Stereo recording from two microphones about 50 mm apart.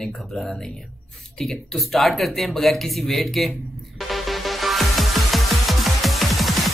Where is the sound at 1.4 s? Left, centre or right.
Centre.